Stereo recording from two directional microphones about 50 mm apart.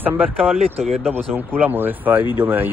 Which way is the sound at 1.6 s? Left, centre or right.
Right.